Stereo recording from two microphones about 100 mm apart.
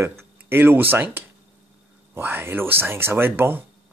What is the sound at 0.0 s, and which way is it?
Speech, 25° right (ahead or behind).